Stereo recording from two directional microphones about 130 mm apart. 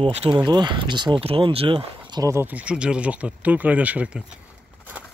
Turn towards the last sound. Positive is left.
turn(degrees=-10)  # may be behind; listen again after turning